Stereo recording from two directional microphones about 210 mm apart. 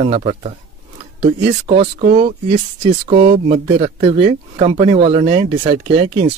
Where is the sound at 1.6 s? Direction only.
30° right (ahead or behind).